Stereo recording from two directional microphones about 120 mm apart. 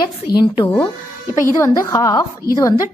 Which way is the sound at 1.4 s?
25° left (ahead or behind).